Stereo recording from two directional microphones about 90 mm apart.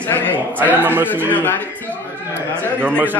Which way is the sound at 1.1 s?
20° left (ahead or behind).